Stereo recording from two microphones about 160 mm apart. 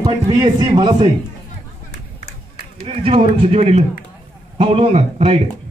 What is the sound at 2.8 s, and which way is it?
A man's voice, 35° right (ahead or behind).